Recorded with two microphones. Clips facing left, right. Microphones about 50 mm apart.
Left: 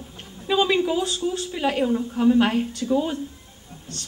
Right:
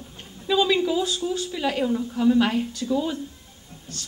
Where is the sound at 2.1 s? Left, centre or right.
Left.